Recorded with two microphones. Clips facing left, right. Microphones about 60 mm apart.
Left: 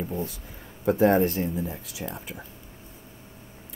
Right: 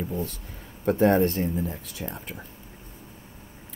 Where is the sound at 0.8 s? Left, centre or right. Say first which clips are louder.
Even; centre.